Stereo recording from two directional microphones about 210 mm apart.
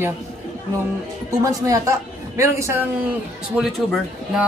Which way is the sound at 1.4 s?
15° right (ahead or behind).